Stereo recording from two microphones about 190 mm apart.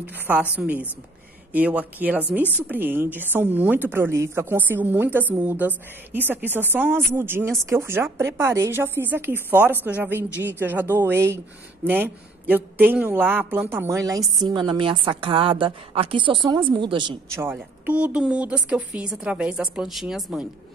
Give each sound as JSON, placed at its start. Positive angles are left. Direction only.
{"t": 0.0, "sound": "a woman's voice", "side_deg": -10}
{"t": 17.3, "sound": "a woman's voice", "side_deg": -10}